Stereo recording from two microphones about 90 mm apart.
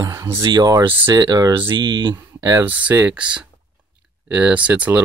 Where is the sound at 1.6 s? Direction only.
60° right (ahead or behind).